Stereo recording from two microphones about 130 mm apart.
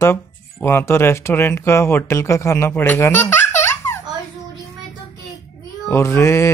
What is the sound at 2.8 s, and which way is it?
Baby laughter, 15° left (ahead or behind).